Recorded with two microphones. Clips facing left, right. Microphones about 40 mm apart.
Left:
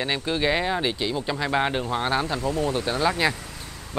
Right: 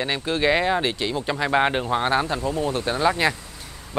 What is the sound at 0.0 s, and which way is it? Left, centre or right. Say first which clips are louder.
Speech: right 2 dB; centre.